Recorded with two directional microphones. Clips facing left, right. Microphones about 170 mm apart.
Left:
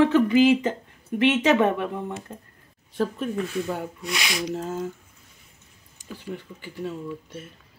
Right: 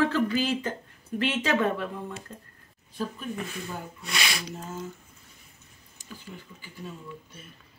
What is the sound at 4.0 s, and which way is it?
Speech, 15° left (ahead or behind).